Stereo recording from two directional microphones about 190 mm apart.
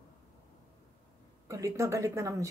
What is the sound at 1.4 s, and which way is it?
Speech, 15° right (ahead or behind).